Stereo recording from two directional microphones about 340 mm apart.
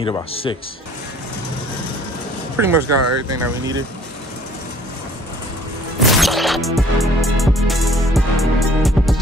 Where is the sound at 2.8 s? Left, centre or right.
Right.